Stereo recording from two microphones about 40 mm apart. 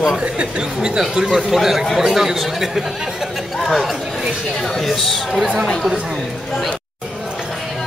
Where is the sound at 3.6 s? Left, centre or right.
Centre.